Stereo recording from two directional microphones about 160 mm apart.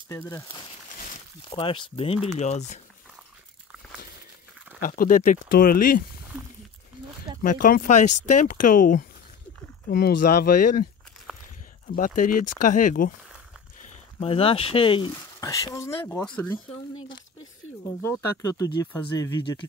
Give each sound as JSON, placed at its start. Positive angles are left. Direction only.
{"t": 0.1, "sound": "speech", "side_deg": 20}
{"t": 1.5, "sound": "speech", "side_deg": 35}
{"t": 2.3, "sound": "speech", "side_deg": 45}
{"t": 4.7, "sound": "speech", "side_deg": 60}
{"t": 7.4, "sound": "speech", "side_deg": 60}
{"t": 11.9, "sound": "speech", "side_deg": 55}
{"t": 14.2, "sound": "speech", "side_deg": 35}
{"t": 15.4, "sound": "speech", "side_deg": 20}
{"t": 18.4, "sound": "speech", "side_deg": 20}